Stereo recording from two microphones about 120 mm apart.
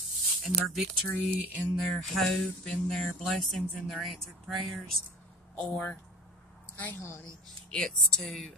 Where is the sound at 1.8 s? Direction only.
5° left (ahead or behind); by 7.2 s 20° left (ahead or behind).